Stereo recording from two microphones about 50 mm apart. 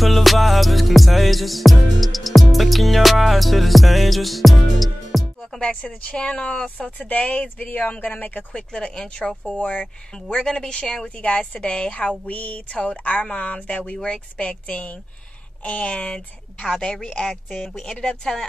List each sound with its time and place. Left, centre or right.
0.0 s music: centre
5.6 s speech: left
8.5 s speech: centre